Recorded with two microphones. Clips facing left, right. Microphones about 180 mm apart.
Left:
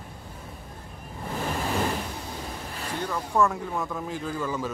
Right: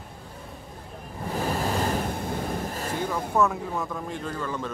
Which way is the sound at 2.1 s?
55° right (ahead or behind).